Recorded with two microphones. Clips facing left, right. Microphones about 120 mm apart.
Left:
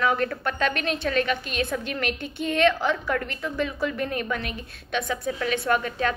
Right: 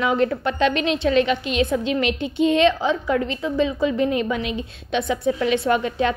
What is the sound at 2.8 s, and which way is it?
A woman's voice, 20° right (ahead or behind).